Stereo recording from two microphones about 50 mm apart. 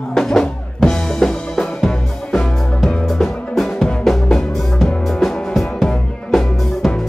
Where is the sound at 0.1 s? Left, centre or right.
Centre.